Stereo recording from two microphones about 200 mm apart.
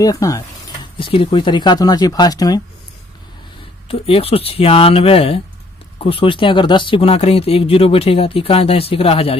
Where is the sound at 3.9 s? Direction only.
30° left (ahead or behind).